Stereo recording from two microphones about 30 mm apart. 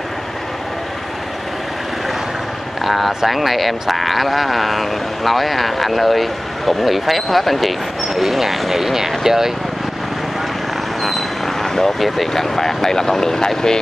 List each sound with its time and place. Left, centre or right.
2.8 s vehicle: centre
3.3 s speech: centre
11.0 s vehicle: centre
11.6 s vehicle: centre
12.3 s speech: centre